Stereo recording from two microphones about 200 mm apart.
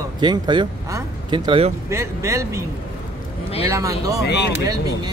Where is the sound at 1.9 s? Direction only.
15° right (ahead or behind).